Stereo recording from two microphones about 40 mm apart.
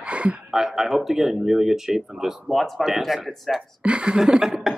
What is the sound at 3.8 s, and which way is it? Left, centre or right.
Speech, right.